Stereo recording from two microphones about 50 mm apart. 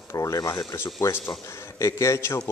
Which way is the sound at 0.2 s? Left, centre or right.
Left.